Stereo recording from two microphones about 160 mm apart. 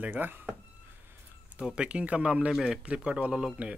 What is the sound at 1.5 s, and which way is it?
Speech, 5° right (ahead or behind).